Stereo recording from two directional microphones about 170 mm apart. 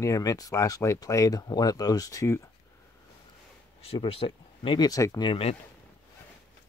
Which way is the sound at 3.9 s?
35° left (ahead or behind).